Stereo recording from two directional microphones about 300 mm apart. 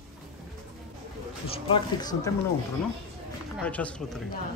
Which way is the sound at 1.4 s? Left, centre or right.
Centre.